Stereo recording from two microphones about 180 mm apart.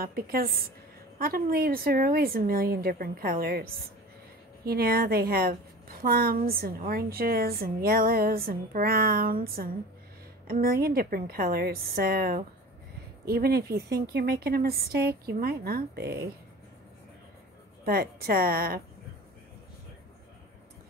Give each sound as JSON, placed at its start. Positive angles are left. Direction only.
{"t": 0.0, "sound": "a woman's voice", "side_deg": -55}
{"t": 17.8, "sound": "a woman's voice", "side_deg": -55}